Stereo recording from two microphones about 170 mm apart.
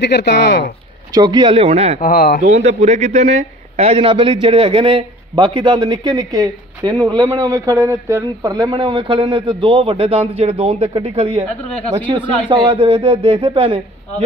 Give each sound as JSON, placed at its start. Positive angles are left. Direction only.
{"t": 0.0, "sound": "speech", "side_deg": 85}
{"t": 1.1, "sound": "a man's voice", "side_deg": -25}
{"t": 2.0, "sound": "speech", "side_deg": 50}
{"t": 2.5, "sound": "a man's voice", "side_deg": -40}
{"t": 12.4, "sound": "a man's voice", "side_deg": -30}